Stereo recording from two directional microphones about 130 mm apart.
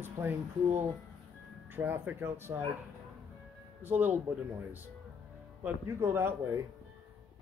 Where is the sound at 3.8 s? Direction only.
15° right (ahead or behind).